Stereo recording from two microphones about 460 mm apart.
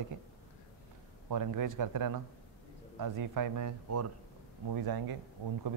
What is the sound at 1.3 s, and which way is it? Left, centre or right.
A man's voice, right.